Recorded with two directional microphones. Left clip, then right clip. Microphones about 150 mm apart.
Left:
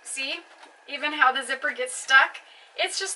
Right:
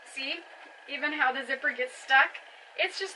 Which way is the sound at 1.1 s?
15° left (ahead or behind).